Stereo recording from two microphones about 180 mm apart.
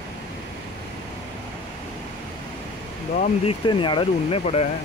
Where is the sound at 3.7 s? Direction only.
25° left (ahead or behind).